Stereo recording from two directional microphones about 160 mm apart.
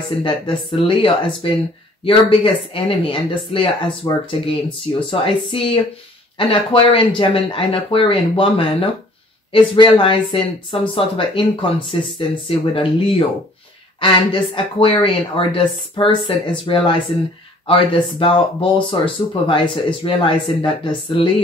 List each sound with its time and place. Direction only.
0.2 s speech: 35° left (ahead or behind)